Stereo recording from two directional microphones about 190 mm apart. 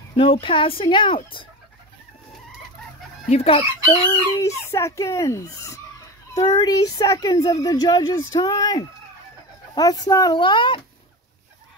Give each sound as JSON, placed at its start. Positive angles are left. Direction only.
{"t": 0.2, "sound": "speech", "side_deg": 25}
{"t": 3.3, "sound": "chicken", "side_deg": 30}
{"t": 4.1, "sound": "chicken", "side_deg": 15}
{"t": 6.3, "sound": "speech", "side_deg": 20}